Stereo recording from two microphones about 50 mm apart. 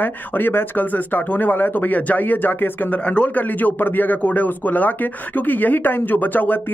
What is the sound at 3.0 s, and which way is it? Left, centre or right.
Speech, left.